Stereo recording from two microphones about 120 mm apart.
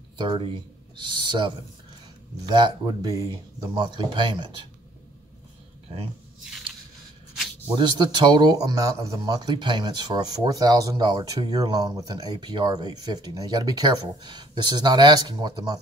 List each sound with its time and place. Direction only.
0.2 s speech: 45° right (ahead or behind)
7.7 s speech: 40° right (ahead or behind)